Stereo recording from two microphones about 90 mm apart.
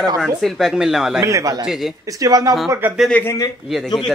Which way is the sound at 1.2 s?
35° right (ahead or behind).